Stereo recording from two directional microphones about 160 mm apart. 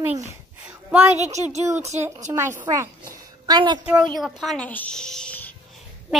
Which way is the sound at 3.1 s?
25° right (ahead or behind).